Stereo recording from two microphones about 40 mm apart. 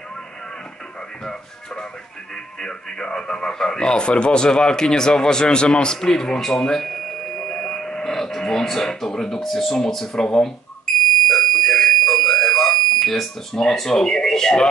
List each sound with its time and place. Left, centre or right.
2.6 s speech: left
11.2 s fire alarm: centre
13.7 s speech: centre